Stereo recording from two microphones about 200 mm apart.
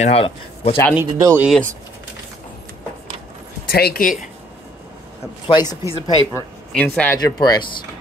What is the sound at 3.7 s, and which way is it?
Speech, 50° left (ahead or behind).